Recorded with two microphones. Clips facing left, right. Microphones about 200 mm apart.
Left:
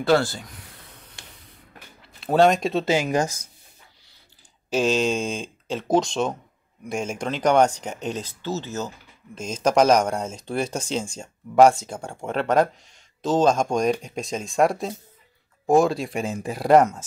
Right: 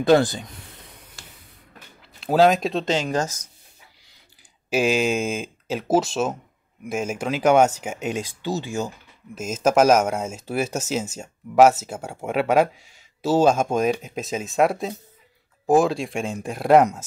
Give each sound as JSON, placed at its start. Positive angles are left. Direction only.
{"t": 0.0, "sound": "speech", "side_deg": -15}
{"t": 2.0, "sound": "speech", "side_deg": 0}
{"t": 4.6, "sound": "speech", "side_deg": -10}